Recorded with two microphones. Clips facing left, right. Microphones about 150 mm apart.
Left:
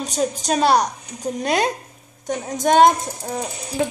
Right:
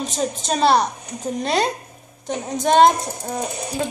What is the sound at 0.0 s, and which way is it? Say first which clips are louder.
A woman's voice: left 2 dB; 5° left (ahead or behind).